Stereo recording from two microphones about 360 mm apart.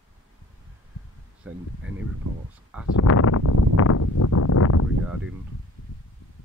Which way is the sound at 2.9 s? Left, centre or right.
Left.